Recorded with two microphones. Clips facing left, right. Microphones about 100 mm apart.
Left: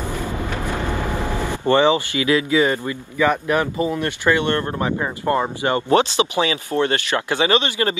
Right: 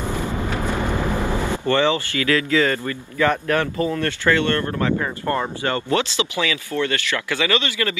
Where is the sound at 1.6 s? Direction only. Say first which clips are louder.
Left 5 dB; 15° left (ahead or behind).